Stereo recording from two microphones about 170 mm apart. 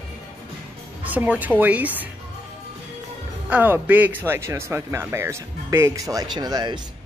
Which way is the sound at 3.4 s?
10° right (ahead or behind).